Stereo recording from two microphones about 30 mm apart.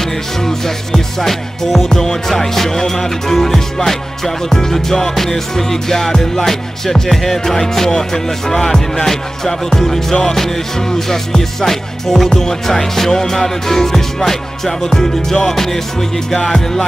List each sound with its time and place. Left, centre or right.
0.4 s music: centre